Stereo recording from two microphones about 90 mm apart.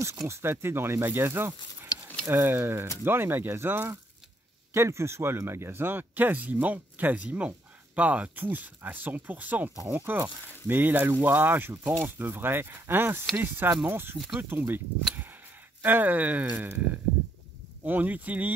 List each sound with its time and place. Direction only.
0.0 s speech: 30° right (ahead or behind)
14.1 s speech: centre (ahead or behind)
14.5 s speech: 25° right (ahead or behind)
15.8 s speech: 20° right (ahead or behind)
17.8 s speech: 20° right (ahead or behind)